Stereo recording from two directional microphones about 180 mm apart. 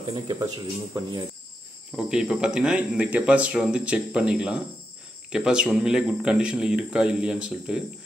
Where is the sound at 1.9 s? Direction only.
5° right (ahead or behind).